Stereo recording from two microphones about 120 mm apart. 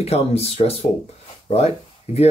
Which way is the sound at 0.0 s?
60° left (ahead or behind).